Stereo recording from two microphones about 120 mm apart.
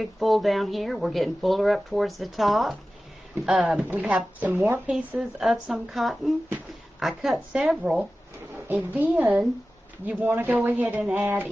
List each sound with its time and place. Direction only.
0.0 s speech: centre (ahead or behind)
8.6 s speech: 15° right (ahead or behind)